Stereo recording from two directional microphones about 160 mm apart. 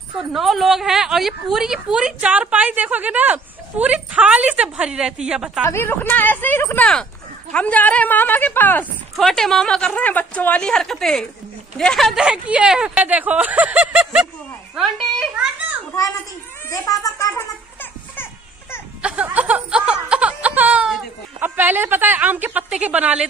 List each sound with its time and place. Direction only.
0.3 s a woman's voice: centre (ahead or behind)
5.7 s a woman's voice: 15° left (ahead or behind); by 15.5 s centre (ahead or behind)
16.7 s speech: 20° left (ahead or behind)
18.1 s music: 15° left (ahead or behind)
19.0 s music: 10° right (ahead or behind)